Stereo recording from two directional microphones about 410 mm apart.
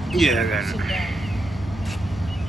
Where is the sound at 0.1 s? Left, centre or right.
Centre.